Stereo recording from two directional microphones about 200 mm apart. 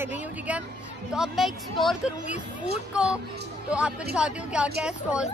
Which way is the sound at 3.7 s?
5° right (ahead or behind).